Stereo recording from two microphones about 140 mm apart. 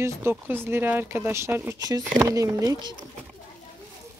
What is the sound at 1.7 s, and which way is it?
Speech, 30° right (ahead or behind).